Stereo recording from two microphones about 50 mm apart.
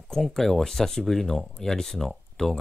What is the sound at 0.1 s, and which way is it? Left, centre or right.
Speech, centre.